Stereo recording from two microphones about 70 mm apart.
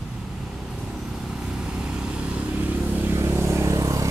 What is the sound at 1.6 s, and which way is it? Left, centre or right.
Vehicle, centre.